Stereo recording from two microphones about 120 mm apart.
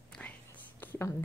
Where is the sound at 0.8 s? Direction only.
20° left (ahead or behind).